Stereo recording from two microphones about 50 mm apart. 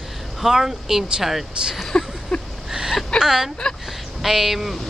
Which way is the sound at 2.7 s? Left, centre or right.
Centre.